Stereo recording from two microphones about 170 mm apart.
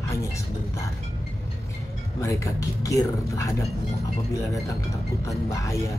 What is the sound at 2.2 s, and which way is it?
Speech, 20° left (ahead or behind).